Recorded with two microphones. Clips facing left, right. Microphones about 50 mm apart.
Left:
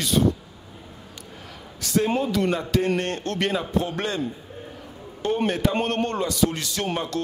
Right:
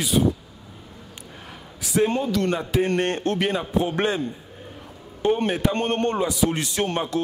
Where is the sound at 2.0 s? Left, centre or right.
Centre.